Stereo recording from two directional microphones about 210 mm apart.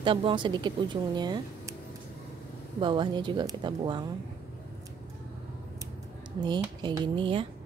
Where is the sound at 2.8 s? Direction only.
20° right (ahead or behind).